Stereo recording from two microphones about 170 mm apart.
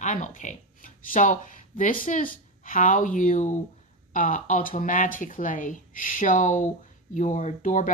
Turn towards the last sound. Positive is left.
turn(degrees=45)  # may be behind; listen again after turning